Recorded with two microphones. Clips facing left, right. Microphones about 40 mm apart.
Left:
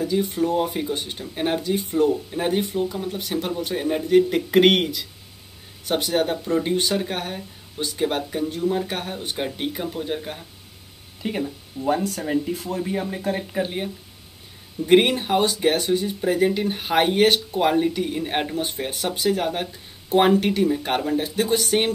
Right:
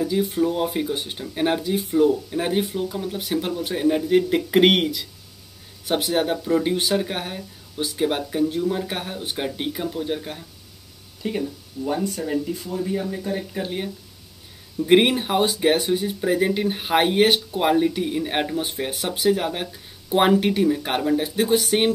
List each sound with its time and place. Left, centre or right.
0.0 s speech: centre
11.2 s speech: left
13.4 s speech: centre
14.9 s speech: centre